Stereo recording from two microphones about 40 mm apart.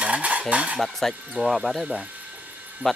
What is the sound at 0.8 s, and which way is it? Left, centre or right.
Speech, centre.